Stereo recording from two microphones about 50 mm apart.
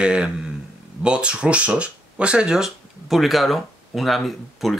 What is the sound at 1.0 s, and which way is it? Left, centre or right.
Speech, right.